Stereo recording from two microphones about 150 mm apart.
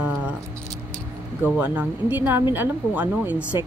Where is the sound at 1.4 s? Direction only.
10° right (ahead or behind).